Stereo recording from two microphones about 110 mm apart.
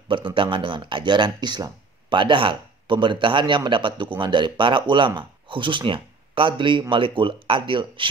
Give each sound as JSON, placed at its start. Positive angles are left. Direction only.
{"t": 0.1, "sound": "speech", "side_deg": -50}